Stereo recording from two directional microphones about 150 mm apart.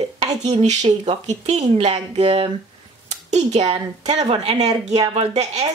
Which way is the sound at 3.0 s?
50° right (ahead or behind).